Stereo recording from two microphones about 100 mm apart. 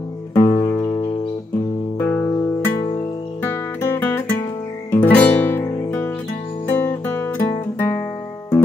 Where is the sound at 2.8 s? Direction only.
30° left (ahead or behind).